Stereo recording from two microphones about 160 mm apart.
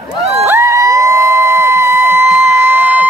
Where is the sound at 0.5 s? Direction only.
20° right (ahead or behind).